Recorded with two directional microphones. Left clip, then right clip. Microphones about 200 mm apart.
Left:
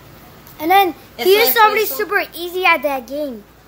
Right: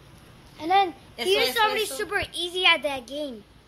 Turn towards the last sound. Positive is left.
turn(degrees=0)  # may be behind; listen again after turning